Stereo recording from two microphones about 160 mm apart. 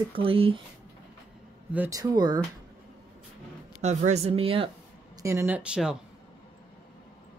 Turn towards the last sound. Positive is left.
turn(degrees=-5)  # may be behind; listen again after turning